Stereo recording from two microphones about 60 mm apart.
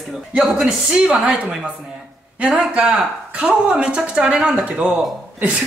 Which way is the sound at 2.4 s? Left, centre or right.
Centre.